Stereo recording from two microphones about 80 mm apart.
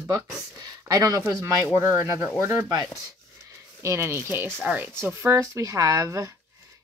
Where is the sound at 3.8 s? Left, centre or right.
Right.